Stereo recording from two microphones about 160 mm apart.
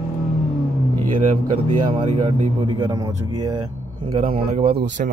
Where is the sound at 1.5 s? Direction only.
30° right (ahead or behind).